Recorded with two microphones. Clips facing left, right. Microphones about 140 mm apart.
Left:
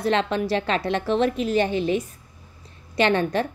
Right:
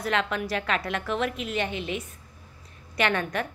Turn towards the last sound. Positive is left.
turn(degrees=30)  # may be behind; listen again after turning